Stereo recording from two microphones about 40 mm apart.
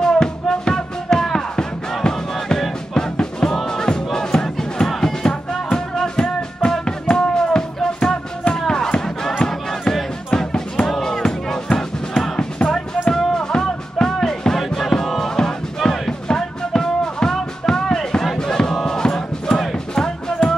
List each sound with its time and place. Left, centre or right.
0.0 s music: centre
2.3 s music: centre; by 8.5 s left
8.5 s music: centre
10.3 s music: left
10.9 s music: centre
11.2 s music: centre
13.1 s music: centre
18.4 s a sound: centre
18.8 s music: centre